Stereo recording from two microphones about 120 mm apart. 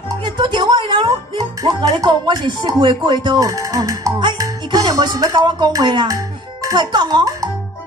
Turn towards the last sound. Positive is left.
turn(degrees=-35)  # may be behind; listen again after turning